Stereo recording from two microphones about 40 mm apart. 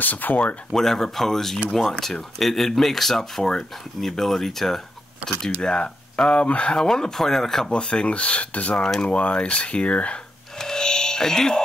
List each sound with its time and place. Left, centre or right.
0.0 s speech: left
0.7 s speech: centre
5.6 s speech: centre
7.6 s speech: left
10.6 s music: centre